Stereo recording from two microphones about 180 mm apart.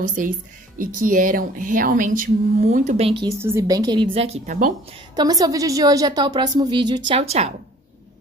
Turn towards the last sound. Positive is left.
turn(degrees=-35)  # may be behind; listen again after turning